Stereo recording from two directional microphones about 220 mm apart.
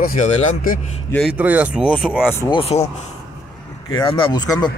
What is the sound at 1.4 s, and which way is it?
Speech, 5° right (ahead or behind).